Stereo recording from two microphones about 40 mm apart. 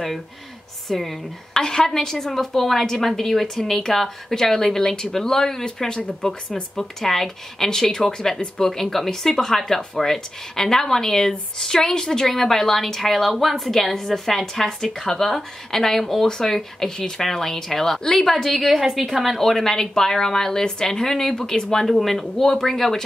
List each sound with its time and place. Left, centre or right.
0.8 s a woman's voice: centre
1.6 s a woman's voice: centre